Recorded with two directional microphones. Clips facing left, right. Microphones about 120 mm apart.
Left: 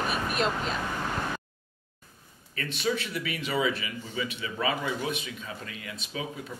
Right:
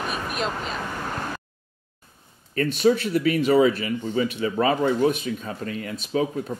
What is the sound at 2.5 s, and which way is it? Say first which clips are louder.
A man's voice: right 10 dB; 45° right (ahead or behind).